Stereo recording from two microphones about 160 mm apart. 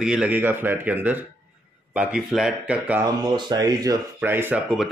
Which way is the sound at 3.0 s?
25° right (ahead or behind).